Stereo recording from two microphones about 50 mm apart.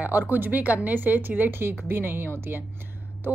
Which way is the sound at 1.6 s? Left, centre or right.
Right.